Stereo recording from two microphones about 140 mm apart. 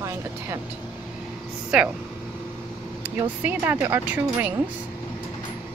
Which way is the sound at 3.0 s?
10° right (ahead or behind).